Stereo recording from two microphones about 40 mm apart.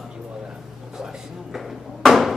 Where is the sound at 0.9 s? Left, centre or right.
Centre.